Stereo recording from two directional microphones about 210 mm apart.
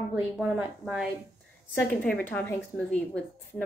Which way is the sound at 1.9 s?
5° left (ahead or behind).